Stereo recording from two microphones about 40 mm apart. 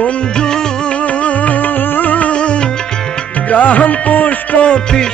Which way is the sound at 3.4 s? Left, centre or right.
Left.